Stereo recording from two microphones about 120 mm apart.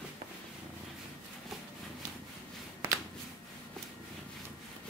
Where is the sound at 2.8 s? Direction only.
15° right (ahead or behind).